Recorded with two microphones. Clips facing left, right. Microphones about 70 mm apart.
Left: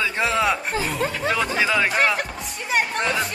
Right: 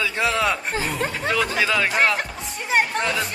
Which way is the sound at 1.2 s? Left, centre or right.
Centre.